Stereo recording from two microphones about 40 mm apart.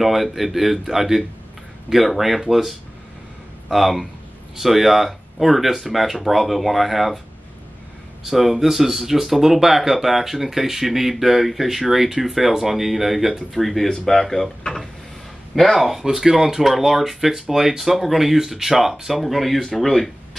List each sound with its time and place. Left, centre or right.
0.0 s speech: centre
8.2 s speech: centre
15.5 s speech: centre
15.8 s speech: centre